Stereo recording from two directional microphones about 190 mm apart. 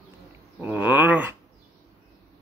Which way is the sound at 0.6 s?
10° right (ahead or behind).